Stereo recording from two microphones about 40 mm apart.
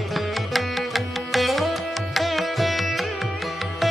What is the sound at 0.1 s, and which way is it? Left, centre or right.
Music, centre.